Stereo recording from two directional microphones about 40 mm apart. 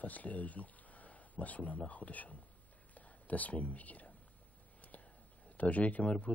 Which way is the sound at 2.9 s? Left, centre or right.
Left.